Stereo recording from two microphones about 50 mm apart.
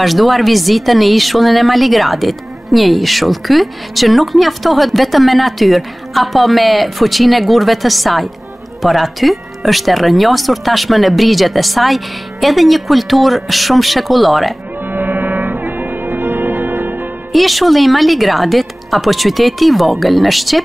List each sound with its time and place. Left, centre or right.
0.0 s speech: centre
14.9 s music: right
17.3 s speech: centre